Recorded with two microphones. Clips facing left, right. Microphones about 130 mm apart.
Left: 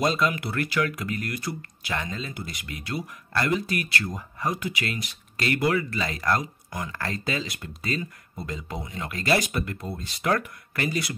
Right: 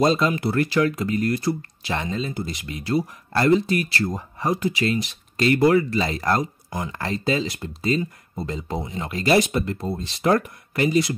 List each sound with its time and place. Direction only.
0.0 s speech: 30° right (ahead or behind)